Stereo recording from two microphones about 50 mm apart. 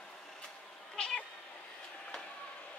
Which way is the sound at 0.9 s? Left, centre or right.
Centre.